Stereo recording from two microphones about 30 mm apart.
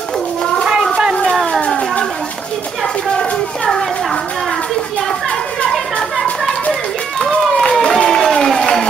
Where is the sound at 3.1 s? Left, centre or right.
Left.